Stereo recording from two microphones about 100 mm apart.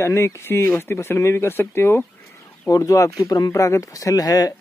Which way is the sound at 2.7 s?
35° left (ahead or behind).